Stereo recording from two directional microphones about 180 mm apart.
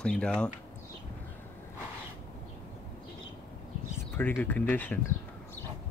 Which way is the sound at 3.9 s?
10° left (ahead or behind).